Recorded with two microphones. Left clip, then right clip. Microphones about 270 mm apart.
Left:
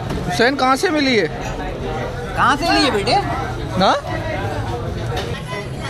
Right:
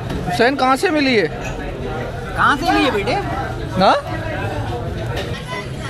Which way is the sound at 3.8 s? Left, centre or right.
Centre.